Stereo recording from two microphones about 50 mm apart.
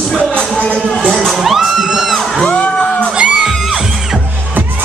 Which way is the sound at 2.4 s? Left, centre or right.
Left.